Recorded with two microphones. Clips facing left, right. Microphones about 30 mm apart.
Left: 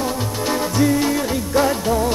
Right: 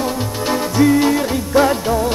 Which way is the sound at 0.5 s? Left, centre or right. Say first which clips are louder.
Right 4 dB; centre.